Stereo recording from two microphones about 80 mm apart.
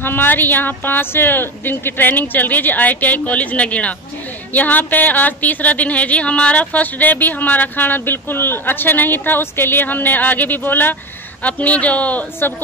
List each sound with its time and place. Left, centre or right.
0.0 s speech: left